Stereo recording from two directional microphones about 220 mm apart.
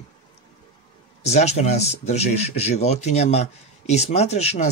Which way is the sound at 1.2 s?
30° left (ahead or behind).